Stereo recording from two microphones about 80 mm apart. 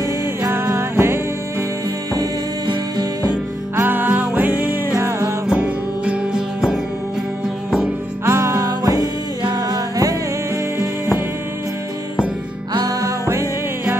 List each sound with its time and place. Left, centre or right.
0.4 s music: right
3.7 s music: right
5.5 s music: centre
8.3 s music: right
8.6 s music: right
12.7 s music: right
13.3 s music: right